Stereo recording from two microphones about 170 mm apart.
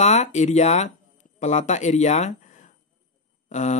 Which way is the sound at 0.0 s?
40° left (ahead or behind).